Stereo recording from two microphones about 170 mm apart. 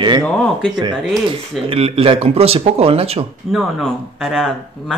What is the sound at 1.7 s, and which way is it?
A man's voice, 35° right (ahead or behind).